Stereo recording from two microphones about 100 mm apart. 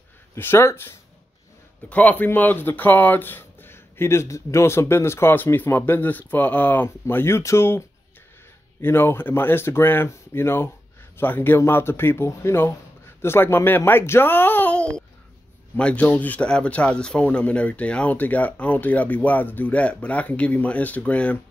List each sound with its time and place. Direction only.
0.4 s speech: 25° left (ahead or behind)
8.8 s speech: 20° left (ahead or behind)